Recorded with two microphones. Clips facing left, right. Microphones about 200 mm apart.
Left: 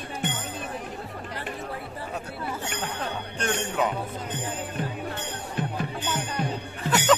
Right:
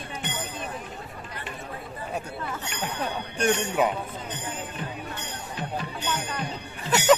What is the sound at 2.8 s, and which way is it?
Speech, 10° right (ahead or behind).